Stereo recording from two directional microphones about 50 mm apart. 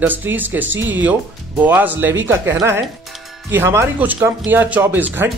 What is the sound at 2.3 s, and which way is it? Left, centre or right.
Speech, right.